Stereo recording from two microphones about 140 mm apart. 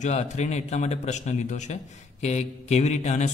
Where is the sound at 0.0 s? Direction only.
55° left (ahead or behind).